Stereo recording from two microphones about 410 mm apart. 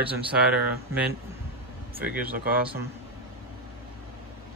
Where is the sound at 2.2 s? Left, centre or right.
Right.